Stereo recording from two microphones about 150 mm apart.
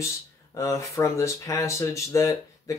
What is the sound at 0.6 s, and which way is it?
Speech, 20° left (ahead or behind).